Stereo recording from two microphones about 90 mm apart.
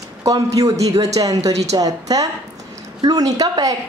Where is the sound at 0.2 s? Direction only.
40° right (ahead or behind).